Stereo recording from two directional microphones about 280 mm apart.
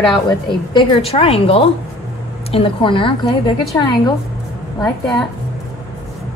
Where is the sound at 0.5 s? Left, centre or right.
Centre.